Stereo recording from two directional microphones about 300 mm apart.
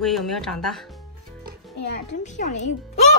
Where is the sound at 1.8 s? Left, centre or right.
Left.